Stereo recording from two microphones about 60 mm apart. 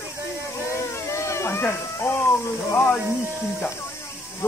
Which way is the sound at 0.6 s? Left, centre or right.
Left.